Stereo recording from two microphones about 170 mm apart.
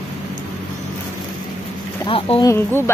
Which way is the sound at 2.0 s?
35° left (ahead or behind).